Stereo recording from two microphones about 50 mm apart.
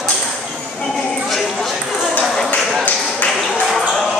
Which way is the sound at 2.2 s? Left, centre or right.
Centre.